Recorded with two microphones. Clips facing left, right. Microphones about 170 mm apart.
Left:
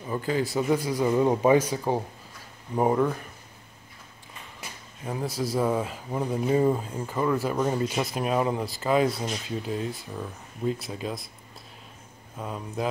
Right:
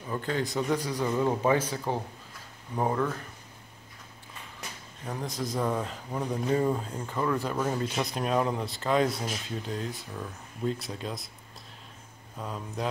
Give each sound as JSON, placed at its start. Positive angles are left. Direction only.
{"t": 0.0, "sound": "a man's voice", "side_deg": 5}
{"t": 4.6, "sound": "a sound", "side_deg": 5}
{"t": 5.4, "sound": "a man's voice", "side_deg": 5}
{"t": 12.4, "sound": "speech", "side_deg": 0}